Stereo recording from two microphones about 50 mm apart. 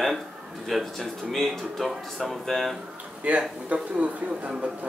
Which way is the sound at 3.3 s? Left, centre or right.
Right.